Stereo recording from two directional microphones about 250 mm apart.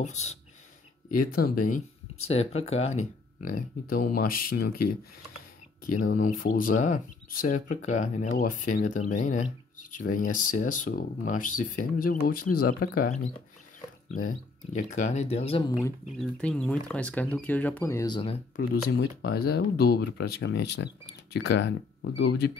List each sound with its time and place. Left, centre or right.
0.0 s speech: left
5.9 s speech: left
16.2 s speech: centre
18.9 s speech: left